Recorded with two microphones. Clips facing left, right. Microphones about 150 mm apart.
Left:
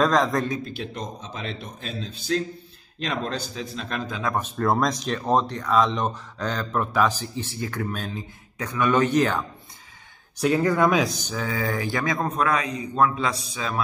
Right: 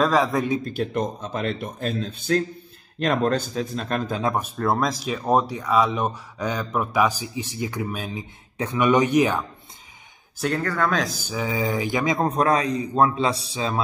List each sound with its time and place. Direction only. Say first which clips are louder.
0.0 s a man's voice: right 1 dB; 5° right (ahead or behind)
0.7 s a man's voice: right 8 dB; 50° right (ahead or behind)
4.4 s speech: even; centre (ahead or behind)
8.5 s speech: right 2 dB; 20° right (ahead or behind)
10.3 s speech: left 3 dB; centre (ahead or behind)
10.6 s speech: left 4 dB; 15° left (ahead or behind)
11.0 s speech: left 1 dB; 5° right (ahead or behind)
12.2 s a man's voice: right 4 dB; 35° right (ahead or behind)